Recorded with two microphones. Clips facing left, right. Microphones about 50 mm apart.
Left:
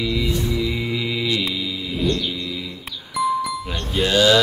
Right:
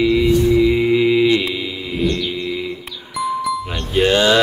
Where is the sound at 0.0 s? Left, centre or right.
Right.